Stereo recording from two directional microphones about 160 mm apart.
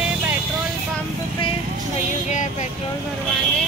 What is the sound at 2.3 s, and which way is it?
Vehicle, 50° left (ahead or behind).